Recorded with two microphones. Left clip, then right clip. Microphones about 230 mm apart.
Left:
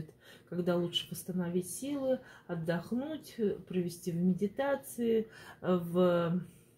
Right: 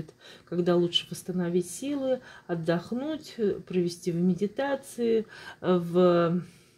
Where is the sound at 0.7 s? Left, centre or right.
Right.